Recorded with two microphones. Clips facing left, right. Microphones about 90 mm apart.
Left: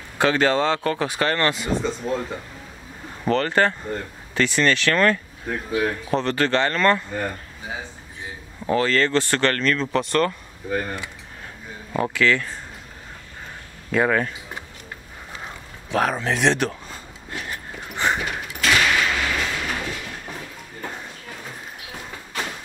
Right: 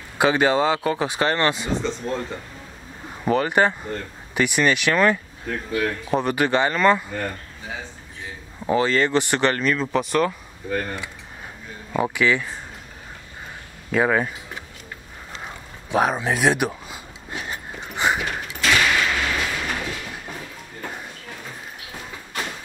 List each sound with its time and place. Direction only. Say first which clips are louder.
0.2 s speech: right 1 dB; 15° right (ahead or behind)
1.7 s speech: left 1 dB; 5° left (ahead or behind)
3.3 s speech: right 1 dB; 15° right (ahead or behind)
5.5 s speech: left 1 dB; 10° left (ahead or behind)
6.1 s speech: right 1 dB; 15° right (ahead or behind)
7.1 s speech: left 1 dB; 5° left (ahead or behind)
8.6 s speech: even; 15° right (ahead or behind)
12.0 s speech: even; 15° right (ahead or behind)
13.9 s speech: even; 10° right (ahead or behind)
15.9 s a sound: right 1 dB; 15° right (ahead or behind)
18.2 s sliding door: right 1 dB; centre (ahead or behind)
18.7 s a sound: even; centre (ahead or behind)